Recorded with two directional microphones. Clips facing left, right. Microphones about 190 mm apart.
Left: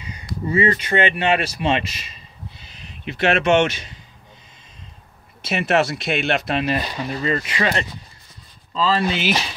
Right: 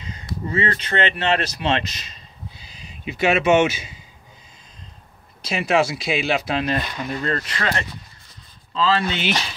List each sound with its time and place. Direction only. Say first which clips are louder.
0.0 s a sound: even; 10° left (ahead or behind)
0.5 s speech: left 4 dB; 10° left (ahead or behind)
5.4 s speech: even; 5° left (ahead or behind)
9.1 s speech: left 2 dB; 5° left (ahead or behind)